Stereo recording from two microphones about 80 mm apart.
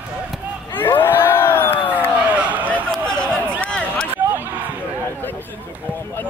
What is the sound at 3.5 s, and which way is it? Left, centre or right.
Run, centre.